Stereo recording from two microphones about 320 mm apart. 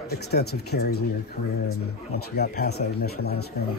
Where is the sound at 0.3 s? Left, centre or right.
Left.